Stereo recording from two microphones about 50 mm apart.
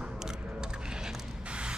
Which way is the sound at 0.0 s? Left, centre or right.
Centre.